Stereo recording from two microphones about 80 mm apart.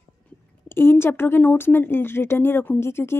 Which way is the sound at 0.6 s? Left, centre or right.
Left.